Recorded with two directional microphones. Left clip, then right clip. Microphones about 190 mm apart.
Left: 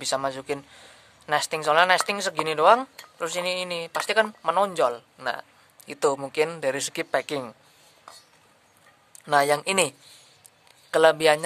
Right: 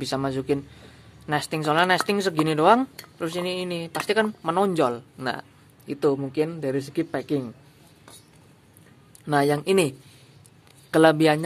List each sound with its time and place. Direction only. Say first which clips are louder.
0.0 s a man's voice: even; 5° left (ahead or behind)
5.9 s a man's voice: right 1 dB; 15° left (ahead or behind)
9.2 s a man's voice: left 1 dB; 10° left (ahead or behind)